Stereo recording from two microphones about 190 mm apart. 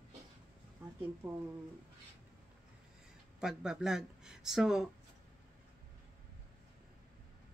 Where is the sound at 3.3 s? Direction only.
5° right (ahead or behind).